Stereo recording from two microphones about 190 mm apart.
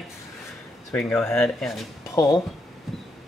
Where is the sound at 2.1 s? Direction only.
20° left (ahead or behind).